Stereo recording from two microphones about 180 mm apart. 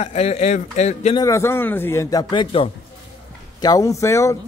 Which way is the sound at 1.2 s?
15° left (ahead or behind).